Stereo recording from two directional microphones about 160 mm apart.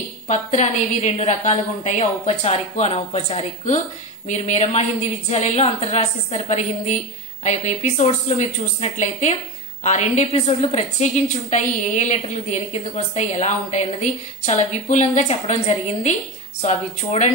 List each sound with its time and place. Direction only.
0.3 s a woman's voice: 45° left (ahead or behind)